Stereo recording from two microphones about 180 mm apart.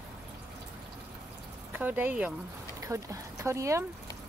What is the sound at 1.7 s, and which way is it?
Speech, 10° right (ahead or behind).